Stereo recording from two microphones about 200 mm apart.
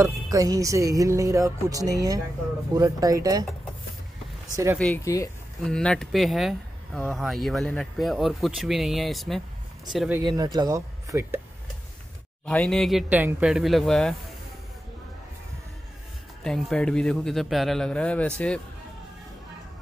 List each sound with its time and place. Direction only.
0.0 s speech: 15° right (ahead or behind)
4.7 s speech: 10° left (ahead or behind)
5.6 s speech: 5° left (ahead or behind)
10.3 s speech: 20° right (ahead or behind)
12.4 s speech: 5° left (ahead or behind)
16.4 s speech: centre (ahead or behind)